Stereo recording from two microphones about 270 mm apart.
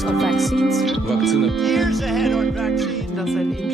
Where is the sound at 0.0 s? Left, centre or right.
Centre.